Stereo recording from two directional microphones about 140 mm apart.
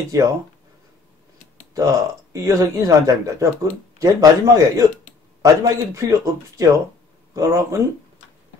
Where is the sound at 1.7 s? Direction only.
25° right (ahead or behind).